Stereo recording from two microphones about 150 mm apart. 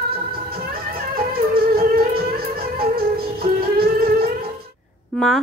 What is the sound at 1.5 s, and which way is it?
Music, 85° right.